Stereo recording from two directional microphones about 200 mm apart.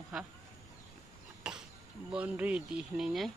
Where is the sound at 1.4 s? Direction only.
5° right (ahead or behind).